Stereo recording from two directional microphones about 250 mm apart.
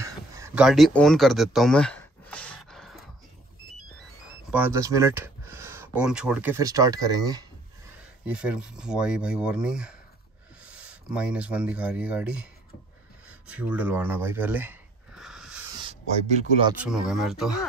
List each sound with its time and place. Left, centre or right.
0.0 s a sound: centre
0.7 s a sound: centre
4.5 s speech: centre
8.3 s speech: centre
13.5 s speech: centre
15.8 s speech: right
16.7 s speech: centre